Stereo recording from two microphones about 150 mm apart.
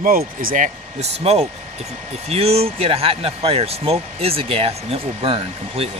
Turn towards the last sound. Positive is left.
turn(degrees=-40)  # may be behind; listen again after turning